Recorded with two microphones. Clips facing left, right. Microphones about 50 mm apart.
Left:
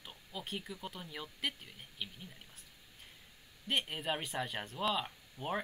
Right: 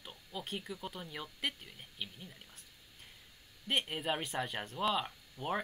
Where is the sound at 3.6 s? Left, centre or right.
Centre.